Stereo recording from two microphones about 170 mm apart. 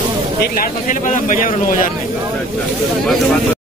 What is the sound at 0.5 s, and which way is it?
Speech, 50° left (ahead or behind).